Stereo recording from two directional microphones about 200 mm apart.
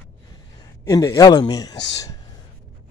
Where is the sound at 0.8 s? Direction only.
15° left (ahead or behind).